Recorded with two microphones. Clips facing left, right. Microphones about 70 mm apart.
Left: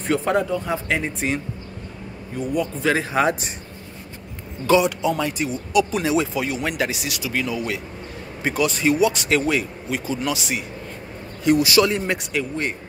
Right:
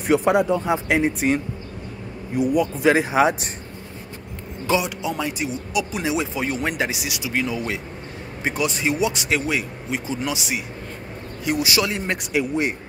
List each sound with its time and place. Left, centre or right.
0.0 s speech: centre
2.3 s a man's voice: centre
2.8 s speech: centre
4.6 s speech: centre
6.3 s speech: right
6.8 s speech: centre
8.5 s speech: centre